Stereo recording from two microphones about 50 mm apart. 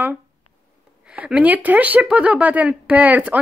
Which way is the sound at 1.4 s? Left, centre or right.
Right.